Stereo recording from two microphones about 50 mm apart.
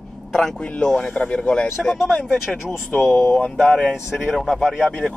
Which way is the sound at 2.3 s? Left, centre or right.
Centre.